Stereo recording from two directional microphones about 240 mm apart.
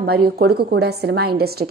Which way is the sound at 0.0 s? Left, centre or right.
Right.